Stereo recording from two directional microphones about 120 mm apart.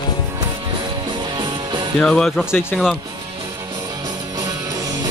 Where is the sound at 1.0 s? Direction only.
40° right (ahead or behind).